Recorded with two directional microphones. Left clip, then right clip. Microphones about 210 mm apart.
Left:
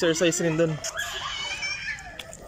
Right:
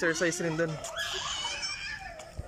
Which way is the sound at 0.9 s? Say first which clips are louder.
Left 3 dB; 45° right (ahead or behind).